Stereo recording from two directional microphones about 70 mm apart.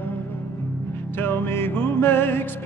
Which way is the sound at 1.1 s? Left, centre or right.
Left.